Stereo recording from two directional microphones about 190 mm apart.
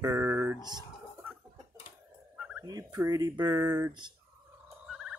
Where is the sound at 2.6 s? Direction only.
20° right (ahead or behind).